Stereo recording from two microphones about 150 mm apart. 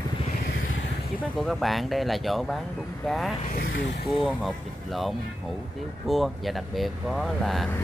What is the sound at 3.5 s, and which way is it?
Speech, 70° left (ahead or behind).